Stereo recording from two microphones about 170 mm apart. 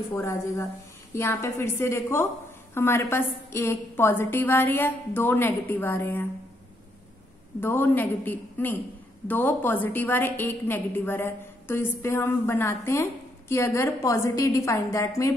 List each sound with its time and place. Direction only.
0.1 s a woman's voice: 15° left (ahead or behind)
7.6 s a woman's voice: 10° left (ahead or behind)